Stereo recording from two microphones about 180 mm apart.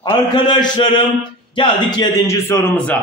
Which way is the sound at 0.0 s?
25° left (ahead or behind).